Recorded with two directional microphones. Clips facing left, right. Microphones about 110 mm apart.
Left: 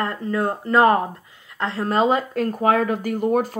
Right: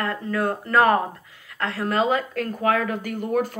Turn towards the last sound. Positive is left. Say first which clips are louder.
# left 4 dB
turn(degrees=40)  # may be behind; listen again after turning